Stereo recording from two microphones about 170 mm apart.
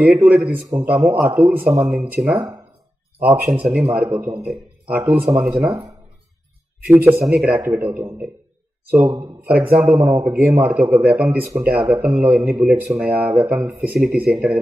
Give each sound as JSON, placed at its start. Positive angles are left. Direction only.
{"t": 0.0, "sound": "speech", "side_deg": -10}
{"t": 2.3, "sound": "speech", "side_deg": -25}
{"t": 3.2, "sound": "speech", "side_deg": -10}
{"t": 6.9, "sound": "a man's voice", "side_deg": -10}
{"t": 13.7, "sound": "speech", "side_deg": 0}